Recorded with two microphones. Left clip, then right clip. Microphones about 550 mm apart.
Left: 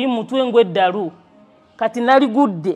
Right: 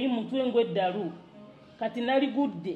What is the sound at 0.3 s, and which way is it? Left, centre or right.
A woman's voice, left.